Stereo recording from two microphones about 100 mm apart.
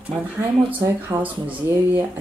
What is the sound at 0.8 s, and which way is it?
Speech, 30° right (ahead or behind).